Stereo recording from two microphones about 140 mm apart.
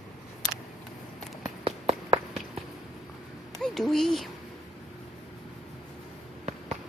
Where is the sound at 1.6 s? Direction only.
40° right (ahead or behind).